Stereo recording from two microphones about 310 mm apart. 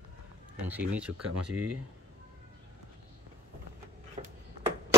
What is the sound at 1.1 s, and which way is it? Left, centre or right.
Speech, right.